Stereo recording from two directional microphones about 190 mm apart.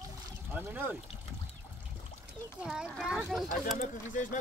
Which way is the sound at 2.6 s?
5° right (ahead or behind).